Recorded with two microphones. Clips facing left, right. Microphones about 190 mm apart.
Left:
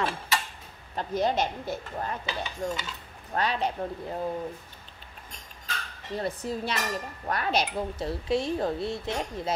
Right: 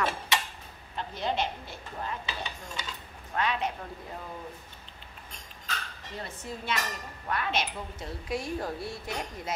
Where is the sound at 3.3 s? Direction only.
35° left (ahead or behind).